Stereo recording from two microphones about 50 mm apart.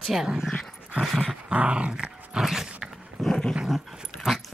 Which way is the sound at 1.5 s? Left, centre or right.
Right.